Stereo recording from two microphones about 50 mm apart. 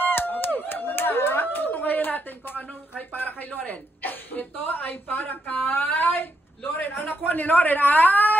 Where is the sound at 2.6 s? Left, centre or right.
Left.